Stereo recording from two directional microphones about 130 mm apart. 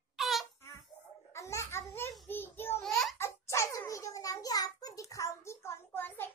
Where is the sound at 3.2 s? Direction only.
20° left (ahead or behind).